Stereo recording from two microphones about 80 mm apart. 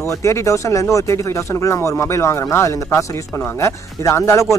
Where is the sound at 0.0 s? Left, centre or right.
Left.